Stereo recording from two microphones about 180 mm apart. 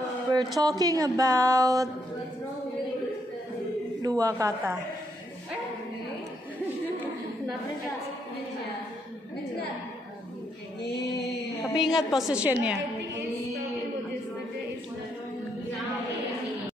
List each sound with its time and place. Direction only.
0.6 s speech: 20° right (ahead or behind)
4.0 s a man's voice: 20° right (ahead or behind)
11.6 s a woman's voice: centre (ahead or behind)